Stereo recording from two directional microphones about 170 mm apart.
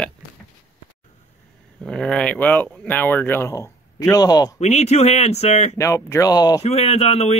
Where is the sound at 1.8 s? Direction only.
5° left (ahead or behind); by 4.5 s 25° left (ahead or behind).